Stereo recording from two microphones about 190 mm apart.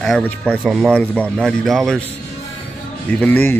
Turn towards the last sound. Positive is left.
turn(degrees=10)  # may be behind; listen again after turning